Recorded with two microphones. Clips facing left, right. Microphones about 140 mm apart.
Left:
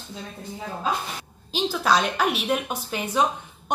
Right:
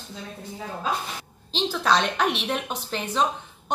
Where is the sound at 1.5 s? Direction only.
10° left (ahead or behind).